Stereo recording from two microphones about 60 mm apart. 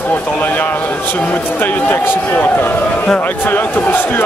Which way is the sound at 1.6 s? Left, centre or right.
Left.